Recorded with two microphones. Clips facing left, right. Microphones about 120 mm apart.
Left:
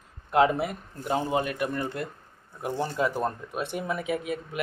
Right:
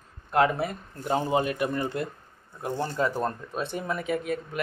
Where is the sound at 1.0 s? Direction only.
Centre (ahead or behind).